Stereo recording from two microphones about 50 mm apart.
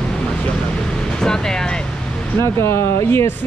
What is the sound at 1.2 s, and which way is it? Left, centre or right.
Speech, centre.